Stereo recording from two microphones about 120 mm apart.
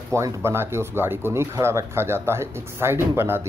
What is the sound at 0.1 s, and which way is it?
Speech, 25° right (ahead or behind).